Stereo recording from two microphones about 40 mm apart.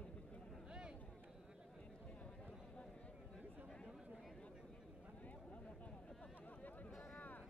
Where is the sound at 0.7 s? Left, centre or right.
Right.